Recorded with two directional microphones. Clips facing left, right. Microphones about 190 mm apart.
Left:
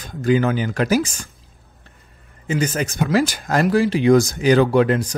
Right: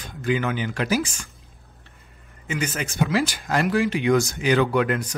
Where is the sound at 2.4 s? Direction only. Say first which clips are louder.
Left 6 dB; 35° left (ahead or behind).